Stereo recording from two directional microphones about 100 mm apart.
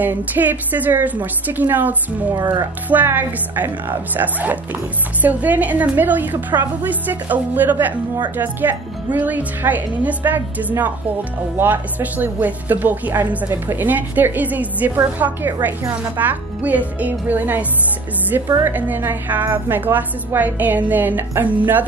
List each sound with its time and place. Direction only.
0.0 s a woman's voice: 15° right (ahead or behind)